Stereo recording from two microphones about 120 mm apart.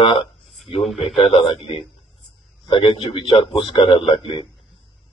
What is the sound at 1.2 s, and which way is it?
A man's voice, 45° left (ahead or behind).